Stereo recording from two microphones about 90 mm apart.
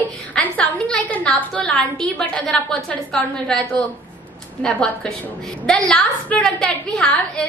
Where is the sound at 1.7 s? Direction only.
Centre (ahead or behind).